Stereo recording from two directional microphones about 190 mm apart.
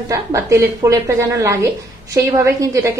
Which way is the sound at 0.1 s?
15° right (ahead or behind).